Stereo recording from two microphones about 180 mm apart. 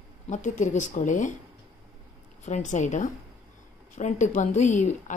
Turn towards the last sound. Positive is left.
turn(degrees=45)  # may be behind; listen again after turning